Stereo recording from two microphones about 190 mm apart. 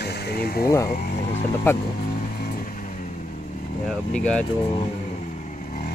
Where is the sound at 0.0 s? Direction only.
55° left (ahead or behind).